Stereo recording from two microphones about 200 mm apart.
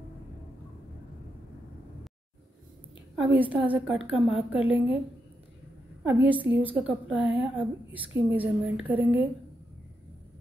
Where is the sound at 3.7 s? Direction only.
5° right (ahead or behind).